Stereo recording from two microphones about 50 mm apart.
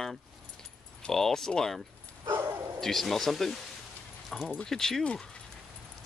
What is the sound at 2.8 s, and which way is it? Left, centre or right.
Speech, centre.